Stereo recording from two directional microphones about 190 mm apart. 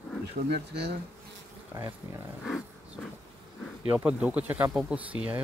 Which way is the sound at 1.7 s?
10° right (ahead or behind).